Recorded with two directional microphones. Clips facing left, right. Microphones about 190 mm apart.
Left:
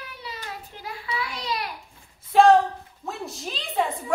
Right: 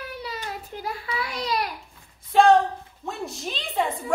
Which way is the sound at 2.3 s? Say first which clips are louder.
Left 1 dB; centre (ahead or behind).